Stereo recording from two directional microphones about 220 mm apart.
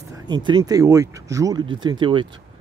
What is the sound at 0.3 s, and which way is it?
Speech, 20° right (ahead or behind).